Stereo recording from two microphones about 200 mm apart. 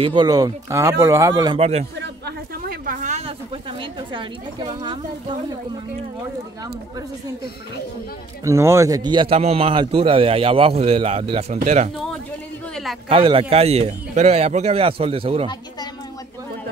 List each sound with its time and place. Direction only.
0.0 s a man's voice: 25° right (ahead or behind)
2.0 s a sound: 50° right (ahead or behind); by 3.3 s 35° right (ahead or behind)
8.5 s a man's voice: 15° right (ahead or behind); by 11.9 s 35° right (ahead or behind)
13.1 s a man's voice: 25° right (ahead or behind)